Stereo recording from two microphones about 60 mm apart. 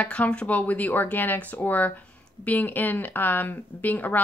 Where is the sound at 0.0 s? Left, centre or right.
Left.